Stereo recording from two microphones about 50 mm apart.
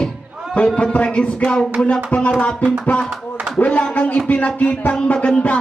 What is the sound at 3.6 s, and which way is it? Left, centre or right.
Speech, left.